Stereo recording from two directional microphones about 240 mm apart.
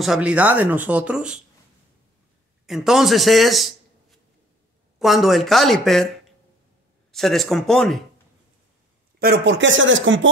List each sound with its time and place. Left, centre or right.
0.0 s speech: centre
2.6 s a man's voice: centre
9.2 s speech: right